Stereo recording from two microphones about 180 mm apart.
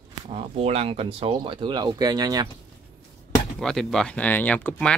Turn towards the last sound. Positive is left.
turn(degrees=5)  # may be behind; listen again after turning